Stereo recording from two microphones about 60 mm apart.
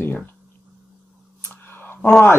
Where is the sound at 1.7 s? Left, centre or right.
Left.